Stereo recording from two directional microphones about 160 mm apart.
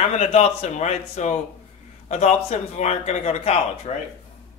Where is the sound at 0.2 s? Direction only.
40° left (ahead or behind).